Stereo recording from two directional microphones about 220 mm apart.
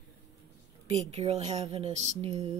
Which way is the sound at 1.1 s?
25° right (ahead or behind).